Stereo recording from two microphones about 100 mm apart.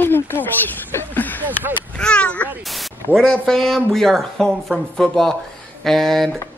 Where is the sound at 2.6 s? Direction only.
Centre (ahead or behind).